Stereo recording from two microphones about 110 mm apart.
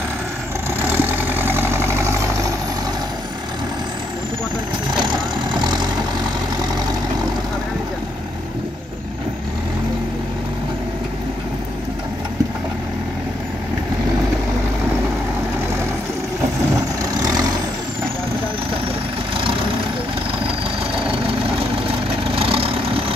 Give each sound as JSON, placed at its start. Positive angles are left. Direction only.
{"t": 0.7, "sound": "vehicle", "side_deg": -20}
{"t": 4.9, "sound": "vehicle", "side_deg": -45}
{"t": 17.1, "sound": "vehicle", "side_deg": -35}
{"t": 22.3, "sound": "vehicle", "side_deg": -55}